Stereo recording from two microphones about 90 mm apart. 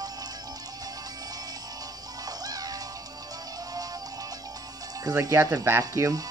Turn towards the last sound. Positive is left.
turn(degrees=-35)  # may be behind; listen again after turning